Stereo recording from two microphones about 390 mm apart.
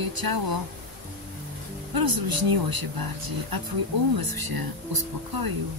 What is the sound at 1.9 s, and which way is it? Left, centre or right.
Speech, right.